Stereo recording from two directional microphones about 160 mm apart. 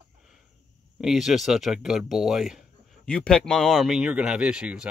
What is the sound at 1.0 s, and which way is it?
Speech, centre (ahead or behind).